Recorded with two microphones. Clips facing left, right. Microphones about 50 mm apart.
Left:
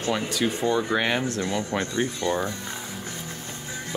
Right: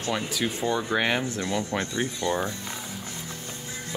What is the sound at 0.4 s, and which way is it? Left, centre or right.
Speech, centre.